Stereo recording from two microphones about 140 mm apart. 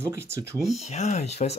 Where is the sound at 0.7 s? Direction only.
55° left (ahead or behind).